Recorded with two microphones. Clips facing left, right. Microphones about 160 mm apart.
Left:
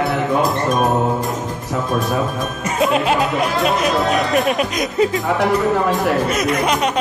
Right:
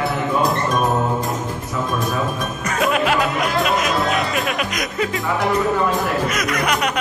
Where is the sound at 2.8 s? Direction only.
30° left (ahead or behind).